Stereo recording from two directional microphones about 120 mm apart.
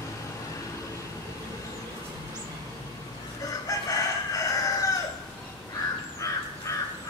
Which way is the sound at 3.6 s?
30° left (ahead or behind).